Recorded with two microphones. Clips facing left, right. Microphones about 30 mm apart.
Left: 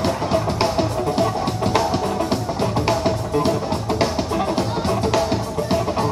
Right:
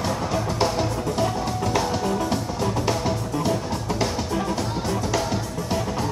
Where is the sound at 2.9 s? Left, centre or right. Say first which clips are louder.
Left 4 dB; left.